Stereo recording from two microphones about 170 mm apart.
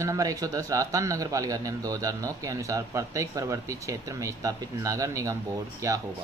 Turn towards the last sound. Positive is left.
turn(degrees=-20)  # may be behind; listen again after turning